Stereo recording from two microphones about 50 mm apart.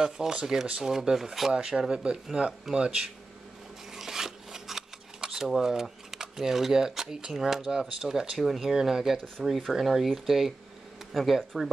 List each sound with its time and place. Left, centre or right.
0.0 s speech: centre
3.9 s a sound: centre
7.3 s speech: centre